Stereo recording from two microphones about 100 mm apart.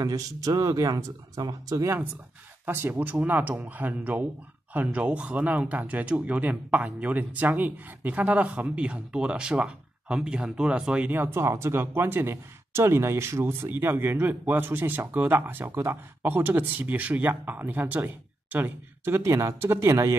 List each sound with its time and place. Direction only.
0.0 s speech: 40° right (ahead or behind)
2.6 s speech: 20° right (ahead or behind)
19.1 s speech: 30° right (ahead or behind)